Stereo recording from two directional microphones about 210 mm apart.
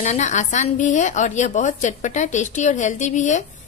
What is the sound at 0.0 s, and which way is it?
A woman's voice, 35° left (ahead or behind).